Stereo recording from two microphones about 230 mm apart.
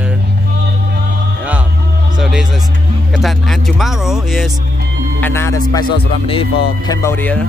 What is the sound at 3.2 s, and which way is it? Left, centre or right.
Speech, centre.